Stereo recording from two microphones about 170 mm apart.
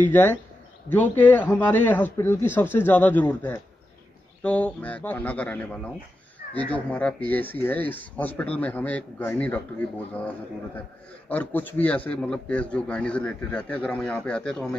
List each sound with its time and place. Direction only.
0.0 s speech: 10° left (ahead or behind)